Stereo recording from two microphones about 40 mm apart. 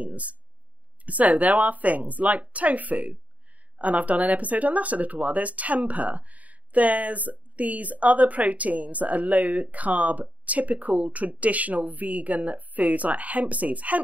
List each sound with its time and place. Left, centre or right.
0.0 s speech: right